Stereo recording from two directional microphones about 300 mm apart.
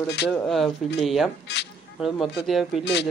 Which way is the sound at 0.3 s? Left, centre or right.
Centre.